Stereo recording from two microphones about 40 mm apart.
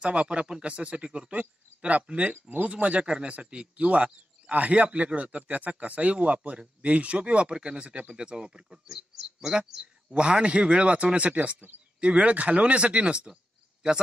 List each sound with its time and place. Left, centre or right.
0.0 s a man's voice: right
7.9 s speech: right
8.2 s speech: right; by 9.5 s centre
10.0 s speech: right